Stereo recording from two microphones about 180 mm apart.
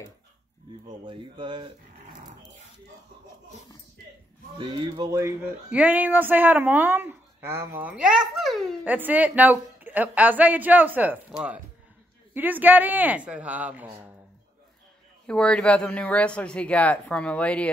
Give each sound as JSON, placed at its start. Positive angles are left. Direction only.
{"t": 1.0, "sound": "speech", "side_deg": -30}
{"t": 4.6, "sound": "speech", "side_deg": -25}
{"t": 5.7, "sound": "speech", "side_deg": -10}
{"t": 15.2, "sound": "speech", "side_deg": 5}